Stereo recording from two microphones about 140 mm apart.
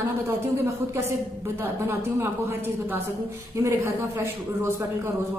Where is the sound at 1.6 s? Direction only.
15° right (ahead or behind).